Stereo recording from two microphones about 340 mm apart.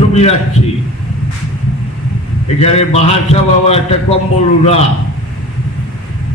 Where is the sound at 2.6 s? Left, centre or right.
Centre.